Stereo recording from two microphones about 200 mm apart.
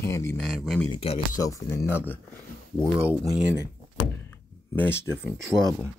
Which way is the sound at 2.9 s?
10° right (ahead or behind).